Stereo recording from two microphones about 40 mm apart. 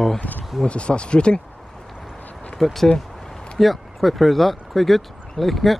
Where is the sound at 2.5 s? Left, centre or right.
Centre.